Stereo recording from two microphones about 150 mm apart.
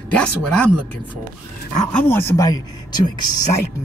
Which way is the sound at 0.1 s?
5° left (ahead or behind).